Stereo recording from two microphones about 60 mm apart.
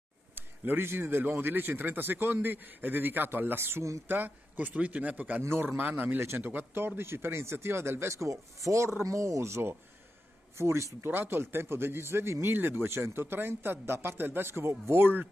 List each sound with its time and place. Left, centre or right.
0.4 s a man's voice: right
5.4 s a man's voice: right
11.1 s a man's voice: right